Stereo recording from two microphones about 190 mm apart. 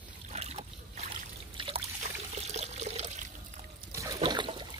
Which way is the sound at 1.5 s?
30° right (ahead or behind).